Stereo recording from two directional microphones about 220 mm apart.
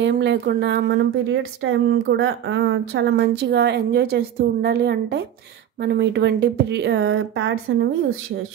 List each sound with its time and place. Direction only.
0.0 s speech: 50° right (ahead or behind)